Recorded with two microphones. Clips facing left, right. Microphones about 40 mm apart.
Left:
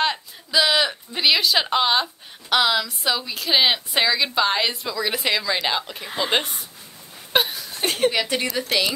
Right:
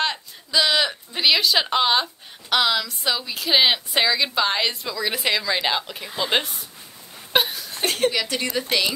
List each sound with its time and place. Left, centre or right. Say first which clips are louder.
0.0 s a woman's voice: left 2 dB; centre
7.3 s a sound: even; centre
8.1 s speech: left 2 dB; centre
8.5 s a woman's voice: right 2 dB; centre